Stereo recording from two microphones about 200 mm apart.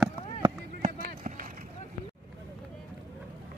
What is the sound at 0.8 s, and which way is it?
Run, 40° right (ahead or behind).